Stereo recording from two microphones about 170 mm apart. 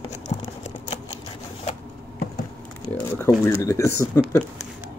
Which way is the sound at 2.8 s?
15° left (ahead or behind).